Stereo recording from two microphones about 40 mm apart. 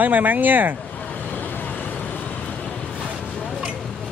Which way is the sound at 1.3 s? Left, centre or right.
Left.